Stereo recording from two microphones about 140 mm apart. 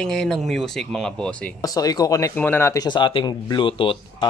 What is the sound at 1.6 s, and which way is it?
Speech, 25° left (ahead or behind).